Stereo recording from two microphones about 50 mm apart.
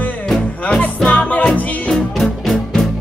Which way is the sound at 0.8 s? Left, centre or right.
Left.